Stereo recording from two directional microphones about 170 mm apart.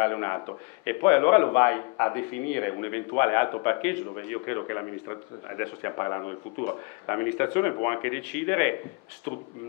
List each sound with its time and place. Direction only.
0.0 s a man's voice: 20° left (ahead or behind)